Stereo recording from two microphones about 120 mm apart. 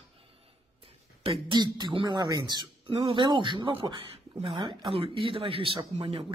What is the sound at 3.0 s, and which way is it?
Speech, 55° right (ahead or behind).